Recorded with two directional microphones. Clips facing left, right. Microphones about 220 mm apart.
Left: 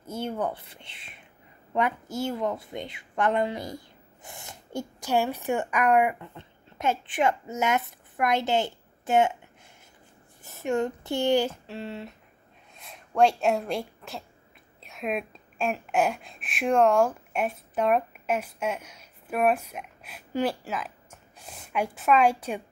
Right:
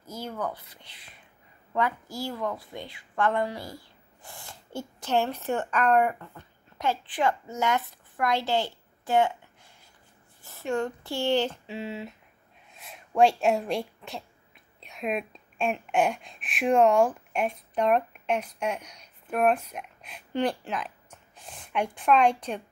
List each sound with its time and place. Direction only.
0.0 s a woman's voice: 25° left (ahead or behind)
10.4 s a woman's voice: 20° left (ahead or behind)